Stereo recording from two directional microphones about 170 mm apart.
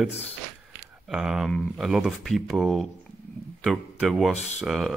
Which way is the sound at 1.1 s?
5° right (ahead or behind).